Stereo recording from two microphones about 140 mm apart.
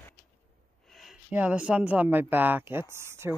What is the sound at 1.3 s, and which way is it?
Speech, 10° right (ahead or behind).